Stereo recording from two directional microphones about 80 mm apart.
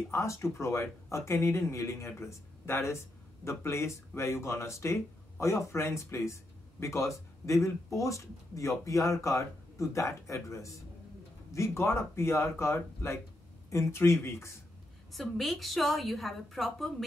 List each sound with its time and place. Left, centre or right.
0.1 s speech: left
15.1 s a woman's voice: centre